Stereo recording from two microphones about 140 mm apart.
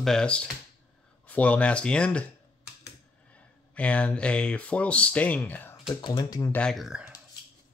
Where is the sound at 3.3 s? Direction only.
10° left (ahead or behind).